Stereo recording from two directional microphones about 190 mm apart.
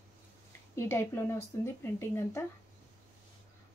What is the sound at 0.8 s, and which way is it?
A woman's voice, 15° left (ahead or behind).